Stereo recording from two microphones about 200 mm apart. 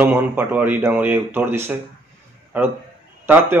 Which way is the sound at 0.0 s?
10° right (ahead or behind).